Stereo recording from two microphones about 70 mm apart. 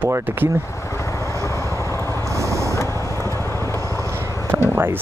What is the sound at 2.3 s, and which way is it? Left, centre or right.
Vehicle, right.